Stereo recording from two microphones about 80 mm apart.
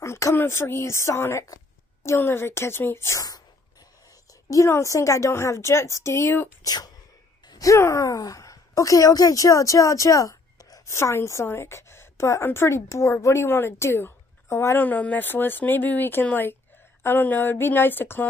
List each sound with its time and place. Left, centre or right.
0.0 s a woman's voice: left
3.2 s a woman's voice: left
6.6 s speech: left
7.4 s groan: left
7.7 s a woman's voice: left